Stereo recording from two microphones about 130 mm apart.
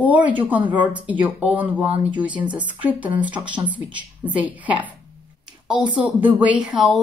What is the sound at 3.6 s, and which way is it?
Speech, 35° right (ahead or behind).